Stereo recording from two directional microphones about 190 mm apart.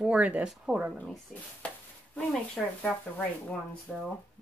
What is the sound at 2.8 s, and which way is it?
Speech, 10° left (ahead or behind).